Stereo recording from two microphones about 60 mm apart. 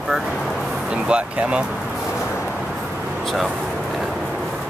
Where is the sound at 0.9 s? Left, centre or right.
Centre.